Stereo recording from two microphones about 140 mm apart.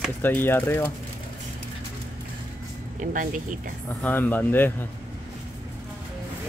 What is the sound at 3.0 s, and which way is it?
Speech, 70° right (ahead or behind).